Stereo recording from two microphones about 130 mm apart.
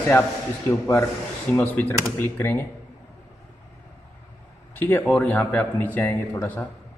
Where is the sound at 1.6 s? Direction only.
15° left (ahead or behind).